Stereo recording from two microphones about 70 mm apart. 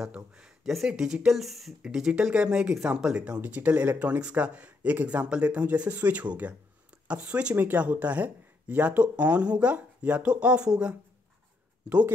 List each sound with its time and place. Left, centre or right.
0.1 s a sound: centre
0.7 s speech: centre
3.3 s speech: right